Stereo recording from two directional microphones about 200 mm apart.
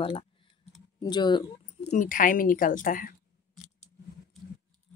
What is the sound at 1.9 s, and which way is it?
Speech, 40° left (ahead or behind).